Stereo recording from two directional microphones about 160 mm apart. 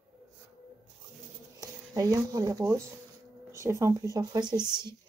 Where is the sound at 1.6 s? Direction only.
25° right (ahead or behind).